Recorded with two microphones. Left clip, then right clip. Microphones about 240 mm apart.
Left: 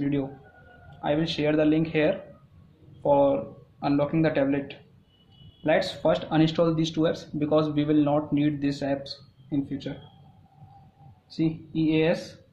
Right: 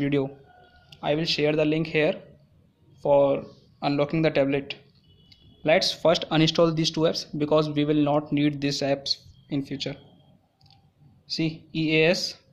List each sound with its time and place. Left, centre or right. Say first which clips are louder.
0.0 s speech: right 3 dB; right
11.3 s speech: left 1 dB; right